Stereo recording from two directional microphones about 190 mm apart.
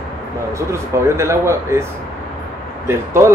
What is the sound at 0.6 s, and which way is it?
A man's voice, 15° right (ahead or behind).